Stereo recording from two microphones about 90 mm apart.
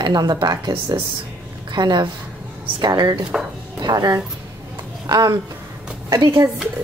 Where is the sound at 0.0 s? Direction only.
50° right (ahead or behind).